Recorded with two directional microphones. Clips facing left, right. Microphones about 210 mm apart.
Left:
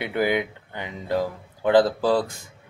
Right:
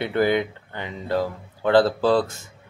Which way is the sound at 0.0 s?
10° left (ahead or behind).